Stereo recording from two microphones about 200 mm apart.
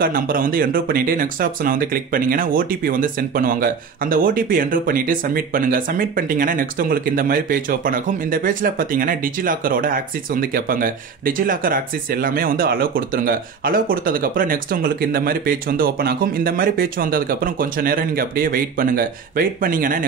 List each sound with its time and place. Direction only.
0.0 s speech: 45° right (ahead or behind)